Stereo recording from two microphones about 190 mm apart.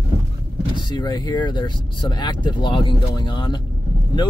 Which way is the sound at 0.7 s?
20° left (ahead or behind).